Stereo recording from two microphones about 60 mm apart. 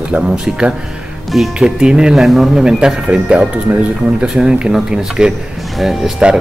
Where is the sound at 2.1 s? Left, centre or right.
Centre.